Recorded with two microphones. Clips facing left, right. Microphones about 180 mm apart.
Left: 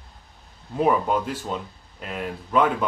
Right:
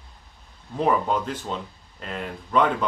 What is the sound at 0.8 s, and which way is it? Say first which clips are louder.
A man's voice: left 1 dB; 5° left (ahead or behind).